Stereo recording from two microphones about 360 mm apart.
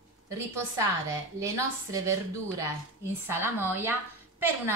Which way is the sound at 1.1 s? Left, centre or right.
Centre.